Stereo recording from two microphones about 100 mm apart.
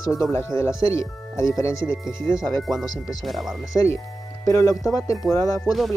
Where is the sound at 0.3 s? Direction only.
25° left (ahead or behind).